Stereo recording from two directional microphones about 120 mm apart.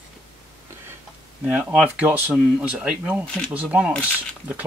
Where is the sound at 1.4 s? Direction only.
10° right (ahead or behind).